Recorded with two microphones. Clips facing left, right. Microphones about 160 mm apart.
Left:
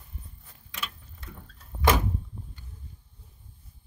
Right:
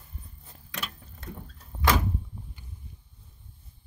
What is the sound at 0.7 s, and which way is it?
Keys jangling, 45° right (ahead or behind).